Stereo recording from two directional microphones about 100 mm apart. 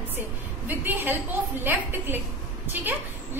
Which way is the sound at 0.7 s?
20° right (ahead or behind).